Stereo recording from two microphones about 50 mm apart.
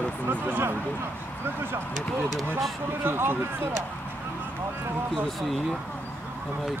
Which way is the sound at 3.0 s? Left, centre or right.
Right.